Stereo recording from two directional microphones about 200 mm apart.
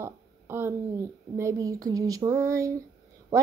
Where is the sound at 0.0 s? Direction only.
10° right (ahead or behind).